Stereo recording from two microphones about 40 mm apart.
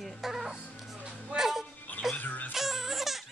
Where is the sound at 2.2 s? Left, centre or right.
Left.